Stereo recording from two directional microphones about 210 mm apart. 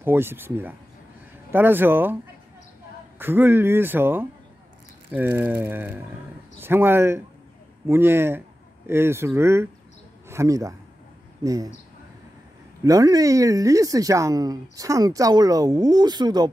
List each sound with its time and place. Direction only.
0.0 s speech: 10° right (ahead or behind)
3.2 s speech: 10° right (ahead or behind)
12.8 s speech: 15° right (ahead or behind)